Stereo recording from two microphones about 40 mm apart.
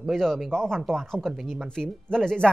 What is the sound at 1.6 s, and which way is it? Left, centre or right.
Speech, centre.